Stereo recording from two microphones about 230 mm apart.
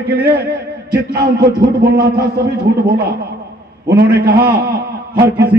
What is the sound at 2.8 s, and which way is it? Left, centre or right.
Speech, right.